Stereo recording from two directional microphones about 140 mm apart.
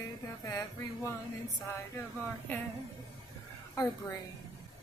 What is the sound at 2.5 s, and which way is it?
Speech, 15° left (ahead or behind).